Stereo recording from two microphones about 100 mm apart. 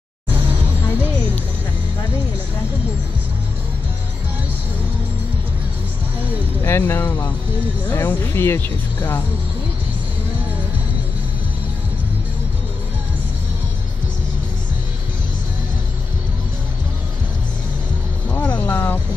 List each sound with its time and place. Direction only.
6.6 s speech: 20° left (ahead or behind)
18.3 s music: 15° left (ahead or behind)